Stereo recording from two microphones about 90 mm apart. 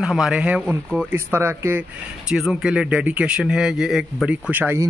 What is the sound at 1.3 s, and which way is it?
Speech, 25° right (ahead or behind).